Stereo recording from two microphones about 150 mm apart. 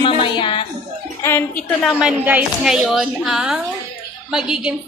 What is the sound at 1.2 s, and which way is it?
Speech, 15° left (ahead or behind).